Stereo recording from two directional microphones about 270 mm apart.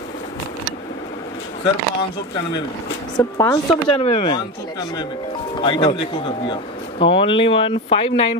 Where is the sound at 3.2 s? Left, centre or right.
Centre.